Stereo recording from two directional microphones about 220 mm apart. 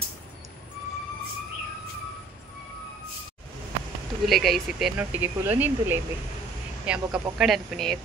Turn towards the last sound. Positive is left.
turn(degrees=0)  # may be behind; listen again after turning